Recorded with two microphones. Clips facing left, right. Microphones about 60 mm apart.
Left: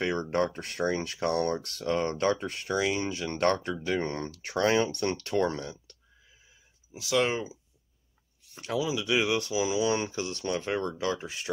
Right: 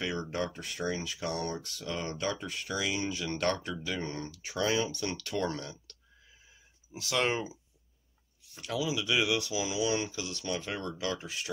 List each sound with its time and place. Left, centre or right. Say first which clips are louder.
0.0 s speech: left 6 dB; left
5.1 s speech: left 6 dB; left
5.4 s speech: left 5 dB; left
7.0 s speech: left 3 dB; centre
8.6 s speech: left 3 dB; left